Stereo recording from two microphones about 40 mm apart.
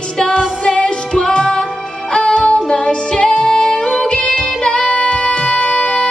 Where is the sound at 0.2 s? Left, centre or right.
Centre.